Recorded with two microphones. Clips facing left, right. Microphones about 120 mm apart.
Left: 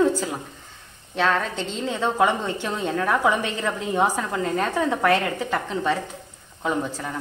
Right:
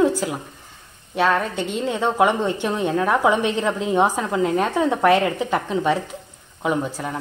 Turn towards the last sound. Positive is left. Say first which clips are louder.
# right 3 dB
turn(degrees=-15)  # may be behind; listen again after turning